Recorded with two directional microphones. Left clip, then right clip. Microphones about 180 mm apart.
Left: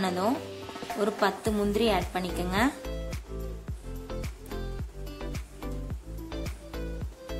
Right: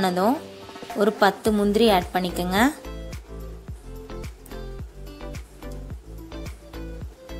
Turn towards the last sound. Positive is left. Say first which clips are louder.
# even
turn(degrees=0)  # may be behind; listen again after turning